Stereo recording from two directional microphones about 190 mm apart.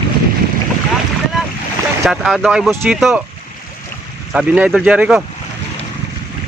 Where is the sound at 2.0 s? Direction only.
Centre (ahead or behind).